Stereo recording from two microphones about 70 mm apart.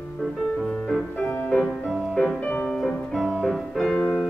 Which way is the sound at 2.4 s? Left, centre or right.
Left.